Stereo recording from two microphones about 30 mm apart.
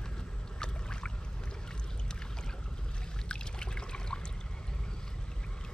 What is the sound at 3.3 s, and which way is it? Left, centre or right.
Trickle, left.